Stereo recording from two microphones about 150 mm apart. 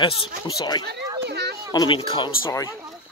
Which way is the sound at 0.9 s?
90° right.